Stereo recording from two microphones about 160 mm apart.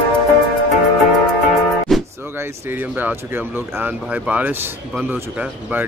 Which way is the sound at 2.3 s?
15° right (ahead or behind).